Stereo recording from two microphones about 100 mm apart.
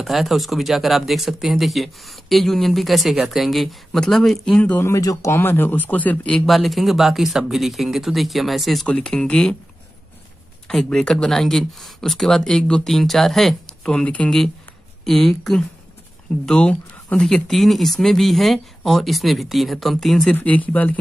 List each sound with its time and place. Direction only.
0.0 s speech: centre (ahead or behind)
4.6 s speech: 15° left (ahead or behind)
4.8 s speech: 30° left (ahead or behind); by 6.4 s 15° left (ahead or behind)
6.4 s speech: centre (ahead or behind)
10.7 s speech: 5° left (ahead or behind)
20.3 s speech: 15° left (ahead or behind)